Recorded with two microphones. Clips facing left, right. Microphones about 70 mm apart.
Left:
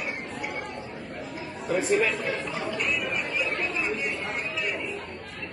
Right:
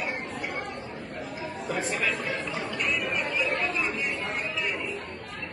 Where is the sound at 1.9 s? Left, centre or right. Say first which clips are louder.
Left 8 dB; left.